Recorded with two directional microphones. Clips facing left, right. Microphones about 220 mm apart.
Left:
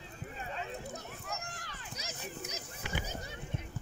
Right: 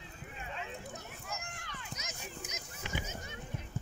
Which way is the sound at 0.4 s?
35° left (ahead or behind).